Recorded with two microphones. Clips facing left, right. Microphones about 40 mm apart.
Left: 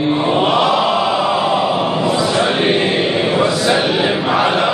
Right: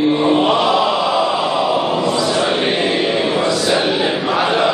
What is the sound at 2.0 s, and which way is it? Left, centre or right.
Choir, centre.